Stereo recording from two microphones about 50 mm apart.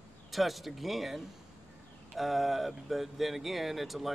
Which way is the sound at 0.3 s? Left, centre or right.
Centre.